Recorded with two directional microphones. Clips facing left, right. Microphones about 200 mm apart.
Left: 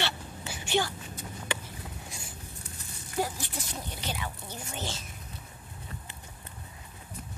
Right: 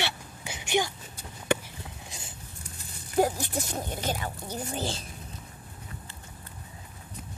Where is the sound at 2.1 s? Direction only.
20° right (ahead or behind).